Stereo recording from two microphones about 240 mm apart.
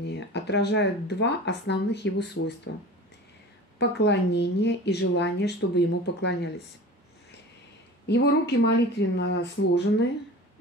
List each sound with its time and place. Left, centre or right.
0.0 s speech: left
3.7 s speech: left
8.6 s speech: left